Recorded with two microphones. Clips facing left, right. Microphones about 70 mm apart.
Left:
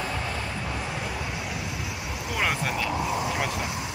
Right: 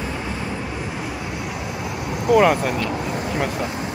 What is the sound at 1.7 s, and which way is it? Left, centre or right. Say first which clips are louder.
Vehicle: right 7 dB; right.